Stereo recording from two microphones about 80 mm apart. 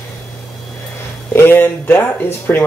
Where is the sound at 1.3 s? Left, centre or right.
Left.